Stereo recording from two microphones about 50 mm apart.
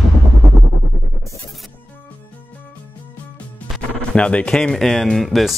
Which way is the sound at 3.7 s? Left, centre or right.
Left.